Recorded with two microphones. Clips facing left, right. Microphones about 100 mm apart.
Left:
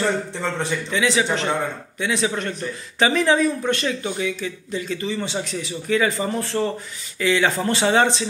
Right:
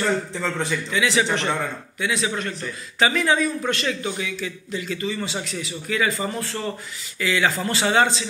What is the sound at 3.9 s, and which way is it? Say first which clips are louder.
A man's voice: left 2 dB; 25° left (ahead or behind).